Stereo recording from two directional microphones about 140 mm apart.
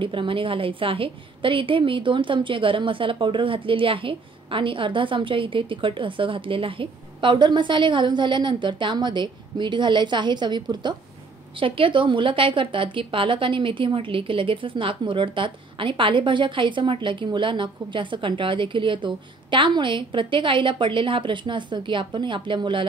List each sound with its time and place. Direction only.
0.0 s a woman's voice: 40° right (ahead or behind)